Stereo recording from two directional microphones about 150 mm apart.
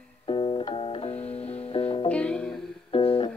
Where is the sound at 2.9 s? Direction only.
35° left (ahead or behind).